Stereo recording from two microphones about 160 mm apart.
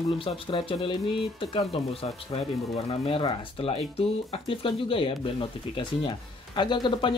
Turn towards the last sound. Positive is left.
turn(degrees=30)  # may be behind; listen again after turning